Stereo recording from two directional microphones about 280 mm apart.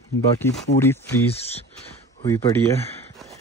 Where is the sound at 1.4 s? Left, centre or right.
Left.